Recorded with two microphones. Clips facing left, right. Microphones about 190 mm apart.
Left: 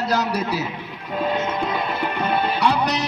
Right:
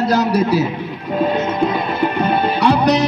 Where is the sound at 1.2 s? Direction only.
40° right (ahead or behind).